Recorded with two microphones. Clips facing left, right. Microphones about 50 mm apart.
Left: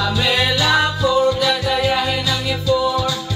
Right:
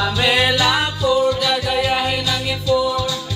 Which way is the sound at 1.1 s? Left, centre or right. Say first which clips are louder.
Right 1 dB; centre.